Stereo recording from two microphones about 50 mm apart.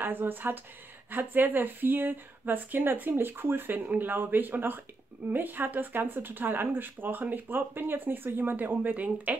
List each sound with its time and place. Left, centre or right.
0.0 s speech: right
3.8 s speech: right
4.1 s speech: right